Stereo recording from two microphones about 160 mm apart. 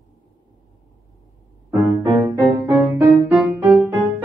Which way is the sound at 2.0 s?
20° right (ahead or behind).